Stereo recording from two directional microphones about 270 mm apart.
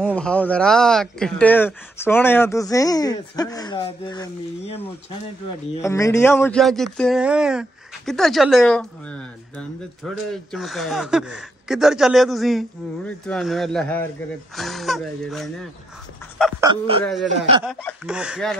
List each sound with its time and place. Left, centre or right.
0.0 s speech: centre
10.3 s speech: centre
16.6 s speech: right
17.6 s speech: centre